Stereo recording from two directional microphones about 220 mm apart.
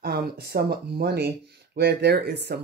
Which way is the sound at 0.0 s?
45° right (ahead or behind).